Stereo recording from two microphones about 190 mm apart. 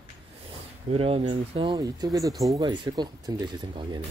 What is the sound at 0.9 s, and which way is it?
Speech, 30° right (ahead or behind).